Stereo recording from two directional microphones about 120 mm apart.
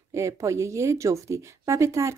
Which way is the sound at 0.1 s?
25° right (ahead or behind).